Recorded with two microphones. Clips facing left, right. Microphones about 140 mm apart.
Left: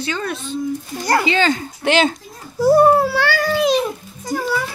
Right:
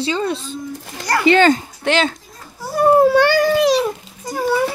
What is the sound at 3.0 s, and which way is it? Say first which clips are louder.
Speech: right 6 dB; 20° right (ahead or behind).